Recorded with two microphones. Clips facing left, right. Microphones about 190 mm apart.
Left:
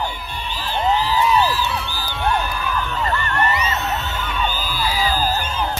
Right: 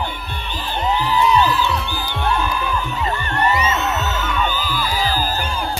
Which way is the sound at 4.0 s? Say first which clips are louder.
Right 3 dB; 45° right (ahead or behind).